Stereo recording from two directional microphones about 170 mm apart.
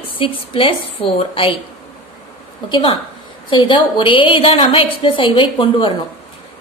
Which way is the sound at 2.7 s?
30° left (ahead or behind).